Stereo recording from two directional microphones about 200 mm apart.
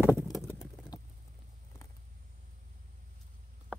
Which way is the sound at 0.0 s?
5° right (ahead or behind).